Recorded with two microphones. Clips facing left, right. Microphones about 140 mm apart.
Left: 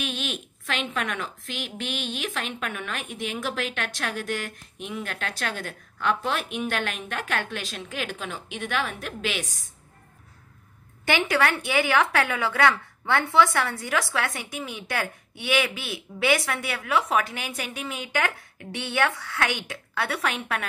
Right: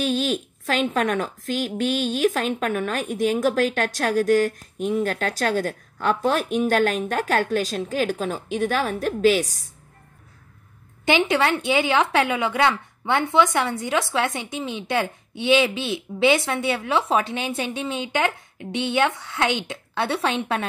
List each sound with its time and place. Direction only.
0.0 s a woman's voice: 35° right (ahead or behind)
11.1 s a woman's voice: 20° right (ahead or behind)